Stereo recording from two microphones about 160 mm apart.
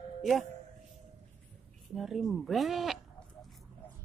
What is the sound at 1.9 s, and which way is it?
Speech, centre (ahead or behind).